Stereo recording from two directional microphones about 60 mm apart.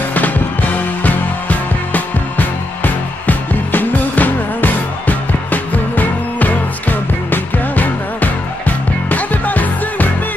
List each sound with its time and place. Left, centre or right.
1.9 s music: left